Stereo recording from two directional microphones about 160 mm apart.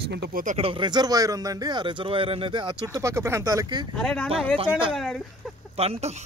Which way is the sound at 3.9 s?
5° left (ahead or behind).